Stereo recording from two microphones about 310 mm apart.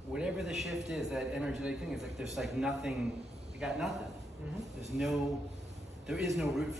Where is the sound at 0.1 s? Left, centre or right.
Centre.